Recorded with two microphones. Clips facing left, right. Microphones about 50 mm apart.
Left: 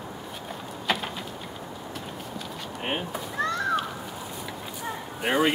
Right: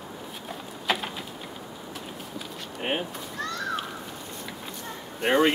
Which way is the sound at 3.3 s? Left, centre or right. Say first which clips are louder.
Left 6 dB; centre.